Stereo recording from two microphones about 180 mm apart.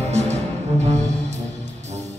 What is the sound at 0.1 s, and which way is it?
Music, 40° right (ahead or behind).